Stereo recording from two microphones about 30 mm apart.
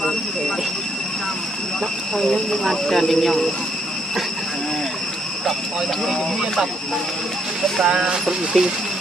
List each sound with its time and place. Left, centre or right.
2.1 s speech: centre
7.8 s speech: right